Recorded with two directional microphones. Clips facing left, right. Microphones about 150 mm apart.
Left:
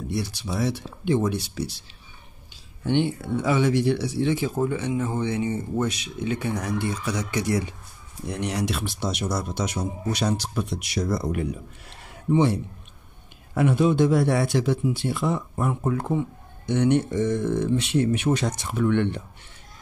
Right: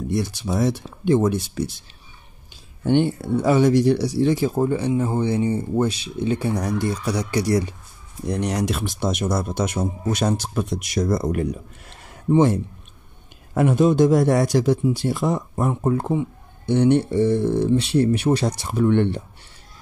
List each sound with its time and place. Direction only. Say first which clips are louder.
0.1 s speech: right 5 dB; 50° right (ahead or behind)
13.6 s speech: right 4 dB; 40° right (ahead or behind)